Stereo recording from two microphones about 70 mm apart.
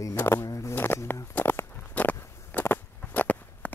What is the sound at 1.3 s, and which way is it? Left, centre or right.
Walk, left.